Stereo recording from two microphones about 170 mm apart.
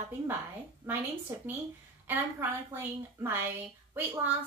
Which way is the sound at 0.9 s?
10° right (ahead or behind).